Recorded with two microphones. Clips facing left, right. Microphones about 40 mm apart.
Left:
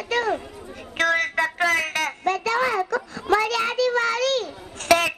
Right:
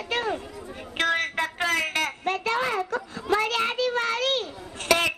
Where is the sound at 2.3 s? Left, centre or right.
Right.